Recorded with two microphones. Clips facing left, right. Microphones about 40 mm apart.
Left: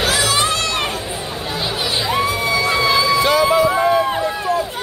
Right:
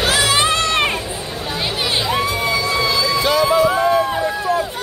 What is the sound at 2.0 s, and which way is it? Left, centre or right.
Crowd, centre.